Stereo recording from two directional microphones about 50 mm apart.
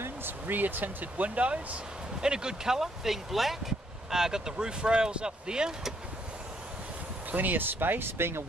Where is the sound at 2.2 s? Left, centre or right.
Centre.